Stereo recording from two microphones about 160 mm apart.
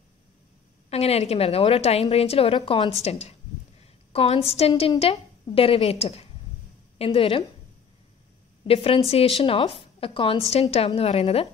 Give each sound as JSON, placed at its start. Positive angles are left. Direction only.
{"t": 0.8, "sound": "a woman's voice", "side_deg": 40}
{"t": 8.6, "sound": "a woman's voice", "side_deg": 35}